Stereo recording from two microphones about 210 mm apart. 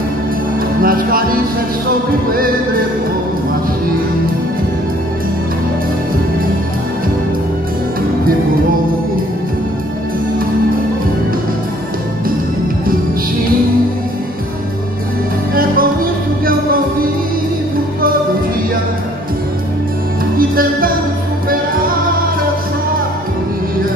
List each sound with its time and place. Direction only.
0.8 s music: 45° right (ahead or behind)
15.5 s music: 45° right (ahead or behind)
20.3 s music: 45° right (ahead or behind)